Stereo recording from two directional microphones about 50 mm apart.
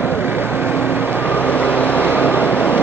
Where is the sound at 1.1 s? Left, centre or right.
Left.